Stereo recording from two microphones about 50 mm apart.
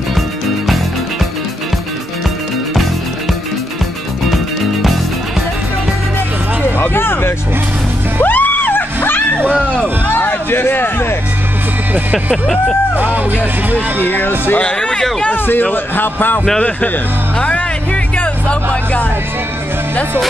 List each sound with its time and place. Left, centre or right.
6.8 s a sound: left
8.2 s music: left
11.9 s speech: right
14.0 s a man's voice: left
14.6 s speech: centre
15.3 s a man's voice: left
17.4 s music: left